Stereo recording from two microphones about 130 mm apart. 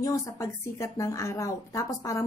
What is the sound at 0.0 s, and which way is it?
A woman's voice, 25° left (ahead or behind).